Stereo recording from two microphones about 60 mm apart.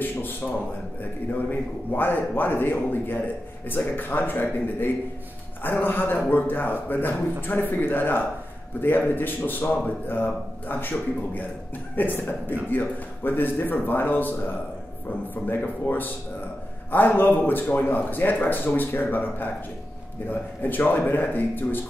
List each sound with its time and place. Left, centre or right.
1.5 s a man's voice: left